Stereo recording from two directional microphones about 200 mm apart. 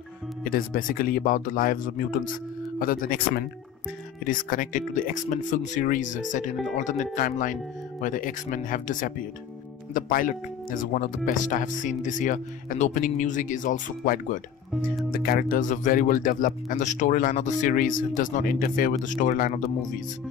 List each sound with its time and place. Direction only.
0.4 s speech: 45° left (ahead or behind)